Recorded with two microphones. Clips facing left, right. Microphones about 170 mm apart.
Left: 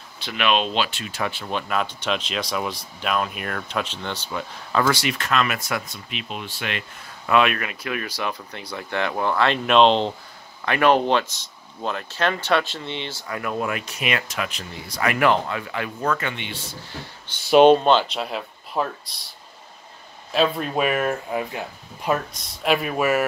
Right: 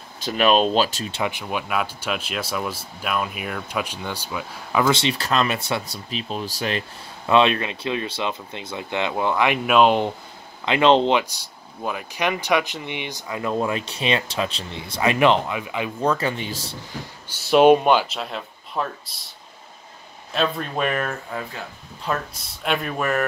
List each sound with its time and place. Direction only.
0.2 s speech: 40° right (ahead or behind)
1.1 s speech: 15° right (ahead or behind)
4.8 s speech: 25° right (ahead or behind)
7.2 s speech: 25° right (ahead or behind)
16.0 s speech: 30° right (ahead or behind)
17.3 s speech: 5° right (ahead or behind)
20.3 s speech: 5° left (ahead or behind)
22.4 s speech: centre (ahead or behind)